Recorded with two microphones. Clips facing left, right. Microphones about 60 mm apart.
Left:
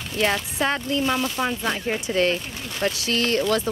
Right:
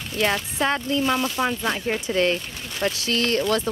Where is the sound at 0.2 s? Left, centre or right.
Centre.